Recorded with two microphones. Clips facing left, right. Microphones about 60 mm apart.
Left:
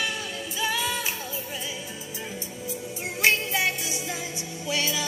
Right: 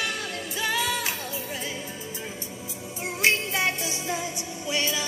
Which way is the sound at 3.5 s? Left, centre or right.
Right.